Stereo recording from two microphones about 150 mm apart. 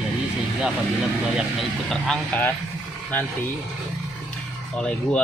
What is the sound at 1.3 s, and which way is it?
Speech, centre (ahead or behind).